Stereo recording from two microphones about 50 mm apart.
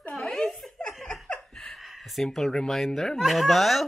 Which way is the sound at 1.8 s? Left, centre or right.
Centre.